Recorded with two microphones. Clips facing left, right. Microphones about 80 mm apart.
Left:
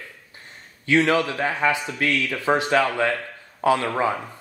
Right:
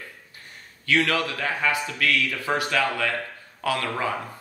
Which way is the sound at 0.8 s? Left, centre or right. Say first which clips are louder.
Left 4 dB; left.